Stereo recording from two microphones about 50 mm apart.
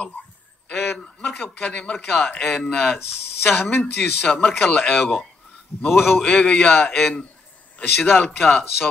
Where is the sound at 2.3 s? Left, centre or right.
Centre.